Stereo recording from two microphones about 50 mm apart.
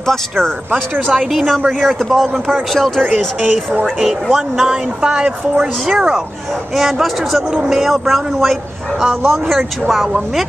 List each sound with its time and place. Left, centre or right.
0.0 s speech: centre
4.0 s speech: centre
5.0 s speech: centre
6.7 s speech: centre